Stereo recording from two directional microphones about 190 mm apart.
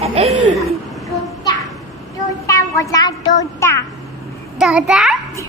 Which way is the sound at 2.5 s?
15° left (ahead or behind).